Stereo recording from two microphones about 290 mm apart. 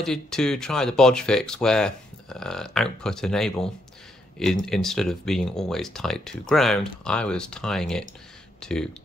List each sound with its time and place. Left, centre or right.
0.0 s speech: centre